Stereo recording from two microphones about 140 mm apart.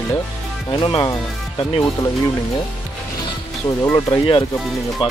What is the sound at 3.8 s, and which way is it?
Speech, 20° left (ahead or behind).